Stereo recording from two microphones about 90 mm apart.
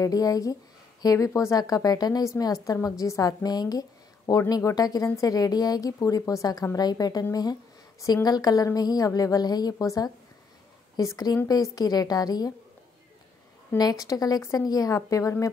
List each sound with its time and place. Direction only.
0.0 s a woman's voice: 40° left (ahead or behind)
13.7 s a woman's voice: 45° left (ahead or behind)